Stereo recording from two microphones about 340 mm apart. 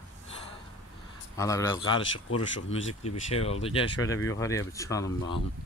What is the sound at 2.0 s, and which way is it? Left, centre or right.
Speech, left.